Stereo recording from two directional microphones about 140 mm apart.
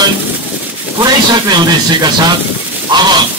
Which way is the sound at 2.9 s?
30° right (ahead or behind).